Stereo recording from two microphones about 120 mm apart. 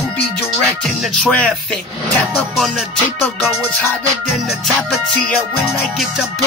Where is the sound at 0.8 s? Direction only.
Centre (ahead or behind).